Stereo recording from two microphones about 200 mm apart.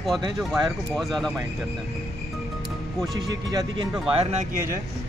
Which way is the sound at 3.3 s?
20° right (ahead or behind).